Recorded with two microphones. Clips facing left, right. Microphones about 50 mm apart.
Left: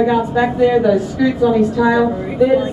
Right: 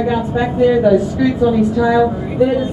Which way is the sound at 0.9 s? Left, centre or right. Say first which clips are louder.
Right 2 dB; right.